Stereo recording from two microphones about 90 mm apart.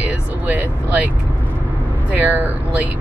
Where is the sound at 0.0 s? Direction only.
20° right (ahead or behind).